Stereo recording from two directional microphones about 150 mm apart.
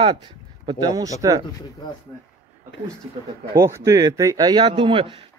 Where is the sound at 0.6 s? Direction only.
25° right (ahead or behind).